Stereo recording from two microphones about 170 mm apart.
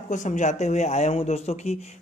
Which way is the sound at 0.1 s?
45° left (ahead or behind).